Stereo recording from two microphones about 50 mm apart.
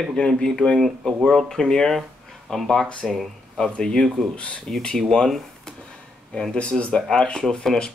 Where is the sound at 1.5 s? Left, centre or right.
Centre.